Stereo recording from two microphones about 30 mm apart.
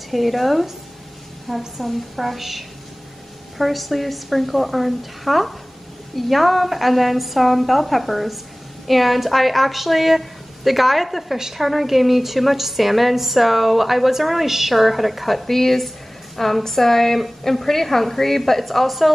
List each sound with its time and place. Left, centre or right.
0.1 s a woman's voice: centre
1.8 s a woman's voice: centre
11.3 s a woman's voice: centre
11.6 s a woman's voice: centre